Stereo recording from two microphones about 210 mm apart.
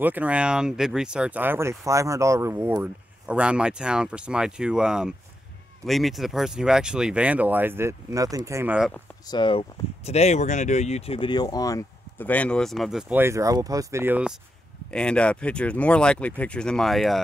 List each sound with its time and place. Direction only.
0.0 s speech: 5° right (ahead or behind)
9.3 s speech: 25° left (ahead or behind); by 14.3 s 10° right (ahead or behind)
14.9 s speech: 5° left (ahead or behind)